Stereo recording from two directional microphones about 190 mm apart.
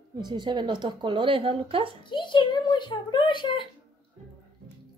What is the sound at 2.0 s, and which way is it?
A child's voice, 25° left (ahead or behind).